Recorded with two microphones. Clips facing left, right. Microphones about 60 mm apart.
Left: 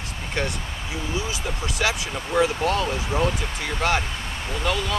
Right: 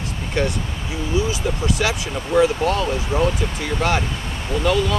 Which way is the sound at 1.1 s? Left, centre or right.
Centre.